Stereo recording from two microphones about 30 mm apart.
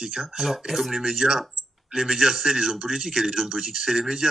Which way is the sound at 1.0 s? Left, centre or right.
Right.